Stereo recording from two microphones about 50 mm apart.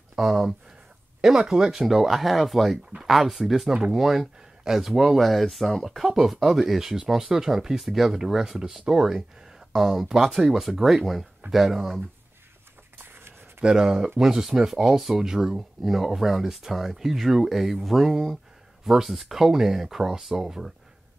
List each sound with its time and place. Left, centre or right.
0.2 s speech: centre
12.9 s a sound: right
13.6 s speech: centre